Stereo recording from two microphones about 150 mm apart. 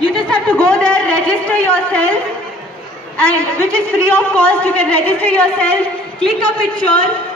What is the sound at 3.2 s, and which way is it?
A woman's voice, 10° left (ahead or behind).